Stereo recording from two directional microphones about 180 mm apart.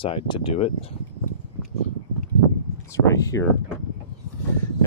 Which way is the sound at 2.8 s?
15° left (ahead or behind).